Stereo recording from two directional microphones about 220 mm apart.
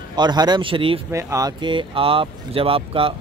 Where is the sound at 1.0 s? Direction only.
15° right (ahead or behind).